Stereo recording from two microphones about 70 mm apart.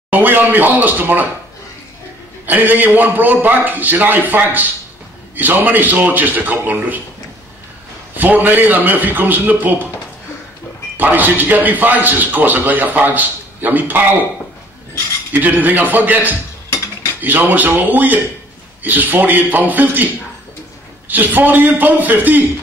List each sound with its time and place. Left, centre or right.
0.1 s a man's voice: right
2.4 s a man's voice: right
8.1 s a man's voice: right
11.0 s a man's voice: right
15.3 s a man's voice: right
21.1 s a man's voice: right